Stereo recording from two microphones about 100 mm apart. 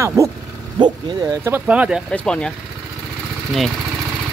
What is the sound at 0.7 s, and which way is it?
Speech, 45° right (ahead or behind).